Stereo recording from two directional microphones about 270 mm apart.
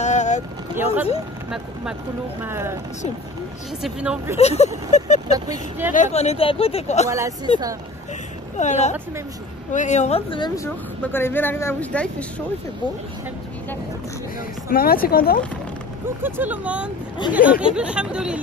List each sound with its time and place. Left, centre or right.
0.0 s boat: left
2.4 s speech: centre
3.8 s speech: centre
4.4 s speech: left
5.3 s speech: centre
5.9 s speech: left
7.1 s speech: centre
8.5 s speech: left; by 12.3 s centre
14.7 s speech: left
16.2 s speech: centre